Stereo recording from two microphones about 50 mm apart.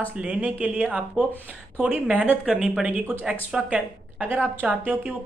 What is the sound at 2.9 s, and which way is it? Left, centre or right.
Speech, right.